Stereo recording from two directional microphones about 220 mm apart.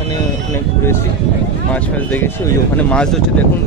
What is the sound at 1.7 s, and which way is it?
Speech, 5° left (ahead or behind).